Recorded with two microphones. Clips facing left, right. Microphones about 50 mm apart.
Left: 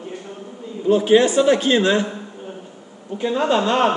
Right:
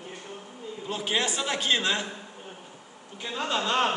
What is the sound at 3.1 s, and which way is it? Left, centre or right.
Speech, left.